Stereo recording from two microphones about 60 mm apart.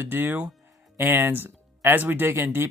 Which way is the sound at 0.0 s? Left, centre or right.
Right.